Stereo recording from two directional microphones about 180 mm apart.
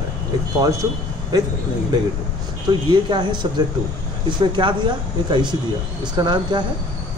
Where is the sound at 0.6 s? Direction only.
20° right (ahead or behind).